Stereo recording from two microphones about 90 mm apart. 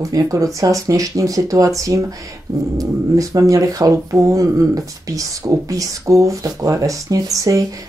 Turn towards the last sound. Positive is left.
turn(degrees=-40)  # may be behind; listen again after turning